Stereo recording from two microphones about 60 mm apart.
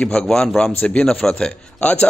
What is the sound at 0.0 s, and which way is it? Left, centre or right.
A man's voice, centre.